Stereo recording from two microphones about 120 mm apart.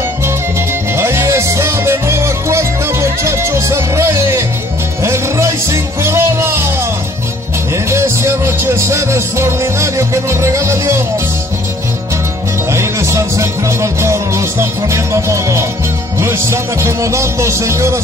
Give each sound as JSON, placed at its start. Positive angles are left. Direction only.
{"t": 0.9, "sound": "music", "side_deg": -20}
{"t": 7.7, "sound": "music", "side_deg": -25}
{"t": 12.7, "sound": "music", "side_deg": -25}